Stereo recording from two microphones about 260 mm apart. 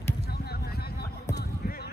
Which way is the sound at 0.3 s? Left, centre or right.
Left.